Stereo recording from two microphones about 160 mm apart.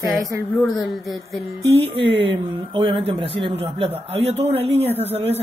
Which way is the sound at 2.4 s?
30° right (ahead or behind).